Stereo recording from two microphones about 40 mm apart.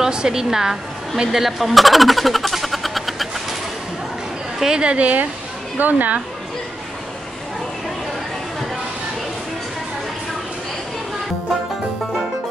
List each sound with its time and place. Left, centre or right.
0.0 s a sound: centre
4.6 s a woman's voice: centre
4.8 s a woman's voice: right